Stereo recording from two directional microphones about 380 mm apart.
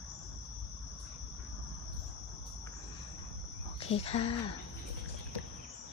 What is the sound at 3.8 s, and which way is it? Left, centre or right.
Speech, centre.